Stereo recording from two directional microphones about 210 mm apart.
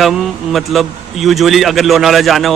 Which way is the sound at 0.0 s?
Centre (ahead or behind).